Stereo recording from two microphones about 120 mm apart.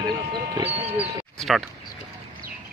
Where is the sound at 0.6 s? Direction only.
55° right (ahead or behind).